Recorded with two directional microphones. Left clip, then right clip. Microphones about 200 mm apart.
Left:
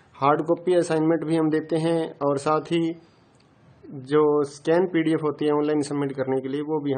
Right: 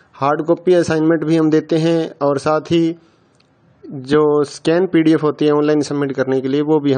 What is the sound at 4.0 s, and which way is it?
Speech, 35° right (ahead or behind).